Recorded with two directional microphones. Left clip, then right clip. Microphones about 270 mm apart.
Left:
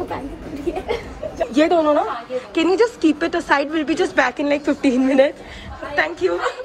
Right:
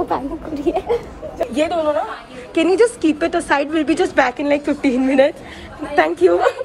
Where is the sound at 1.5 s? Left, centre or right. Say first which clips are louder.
Left 3 dB; centre.